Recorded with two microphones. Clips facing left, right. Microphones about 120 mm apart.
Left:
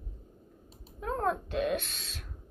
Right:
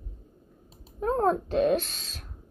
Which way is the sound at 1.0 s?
35° right (ahead or behind).